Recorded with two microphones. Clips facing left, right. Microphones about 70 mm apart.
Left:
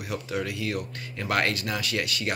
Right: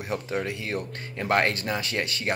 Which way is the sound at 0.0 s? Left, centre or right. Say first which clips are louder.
Right 2 dB; right.